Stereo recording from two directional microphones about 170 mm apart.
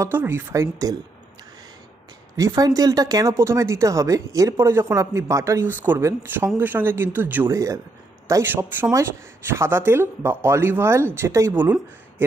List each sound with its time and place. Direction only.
0.0 s speech: 15° right (ahead or behind)
2.3 s speech: 20° right (ahead or behind)